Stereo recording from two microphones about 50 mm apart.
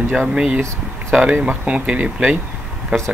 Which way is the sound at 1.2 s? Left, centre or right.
Centre.